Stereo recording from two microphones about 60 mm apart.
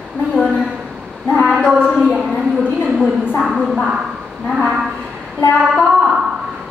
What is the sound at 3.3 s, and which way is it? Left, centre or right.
Speech, centre.